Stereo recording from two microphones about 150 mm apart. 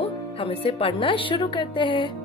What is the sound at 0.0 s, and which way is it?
Speech, 40° left (ahead or behind).